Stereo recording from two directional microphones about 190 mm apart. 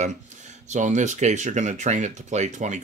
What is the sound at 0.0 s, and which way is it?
Speech, 40° right (ahead or behind).